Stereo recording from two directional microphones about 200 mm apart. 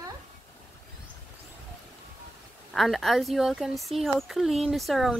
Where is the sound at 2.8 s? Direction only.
Centre (ahead or behind).